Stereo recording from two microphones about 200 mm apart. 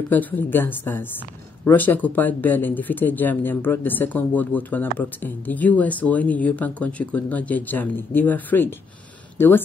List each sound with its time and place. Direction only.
0.1 s speech: 10° left (ahead or behind)